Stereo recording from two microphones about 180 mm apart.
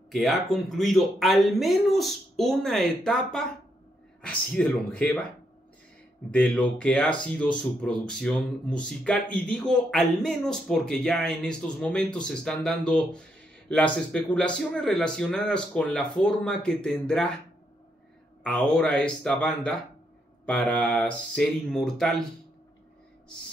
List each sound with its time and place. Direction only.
0.1 s speech: centre (ahead or behind)
6.3 s speech: 5° left (ahead or behind)
18.4 s speech: 5° left (ahead or behind)